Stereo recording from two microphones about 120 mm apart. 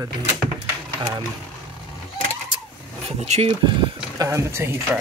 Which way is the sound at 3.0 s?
60° right (ahead or behind).